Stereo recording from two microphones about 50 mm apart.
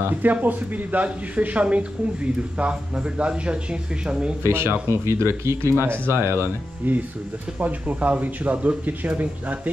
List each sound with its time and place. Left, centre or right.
0.2 s speech: right
3.2 s speech: right
4.5 s speech: right
6.8 s speech: right